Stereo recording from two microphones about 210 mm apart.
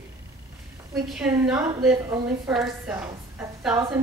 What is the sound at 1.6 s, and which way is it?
Speech, 20° right (ahead or behind).